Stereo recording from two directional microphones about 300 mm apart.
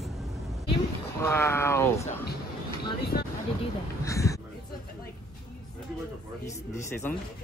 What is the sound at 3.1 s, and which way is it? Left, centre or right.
Speech, left.